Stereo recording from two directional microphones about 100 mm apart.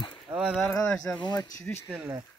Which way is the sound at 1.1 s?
45° left (ahead or behind).